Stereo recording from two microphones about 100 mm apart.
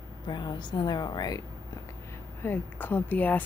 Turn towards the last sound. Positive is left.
turn(degrees=15)  # may be behind; listen again after turning